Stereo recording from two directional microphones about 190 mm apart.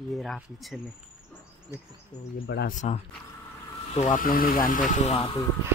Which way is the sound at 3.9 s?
40° left (ahead or behind).